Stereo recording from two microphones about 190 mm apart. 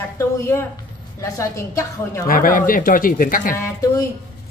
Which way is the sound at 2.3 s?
45° left (ahead or behind).